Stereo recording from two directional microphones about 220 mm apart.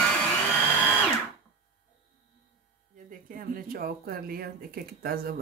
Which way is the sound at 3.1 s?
40° right (ahead or behind).